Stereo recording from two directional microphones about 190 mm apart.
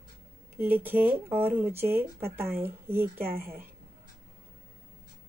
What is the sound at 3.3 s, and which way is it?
Speech, 55° right (ahead or behind).